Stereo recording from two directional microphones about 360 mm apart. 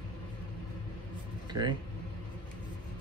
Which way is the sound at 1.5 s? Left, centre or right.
Centre.